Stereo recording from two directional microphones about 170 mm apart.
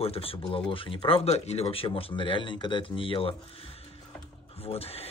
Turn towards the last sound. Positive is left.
turn(degrees=35)  # may be behind; listen again after turning